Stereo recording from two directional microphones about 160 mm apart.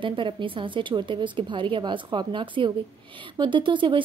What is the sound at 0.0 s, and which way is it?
Speech, 30° right (ahead or behind).